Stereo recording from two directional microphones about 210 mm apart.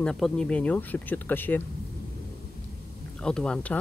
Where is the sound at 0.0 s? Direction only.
5° left (ahead or behind).